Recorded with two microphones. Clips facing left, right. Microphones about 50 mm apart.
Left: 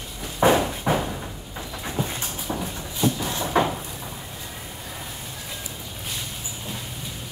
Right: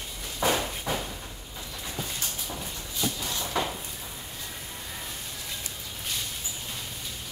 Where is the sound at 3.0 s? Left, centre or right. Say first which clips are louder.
Left 8 dB; left.